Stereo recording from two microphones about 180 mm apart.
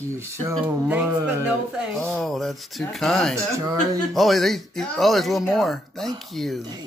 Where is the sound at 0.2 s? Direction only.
15° right (ahead or behind); by 6.6 s centre (ahead or behind).